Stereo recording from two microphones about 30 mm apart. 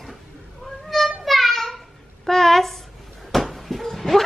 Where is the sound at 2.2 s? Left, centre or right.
Centre.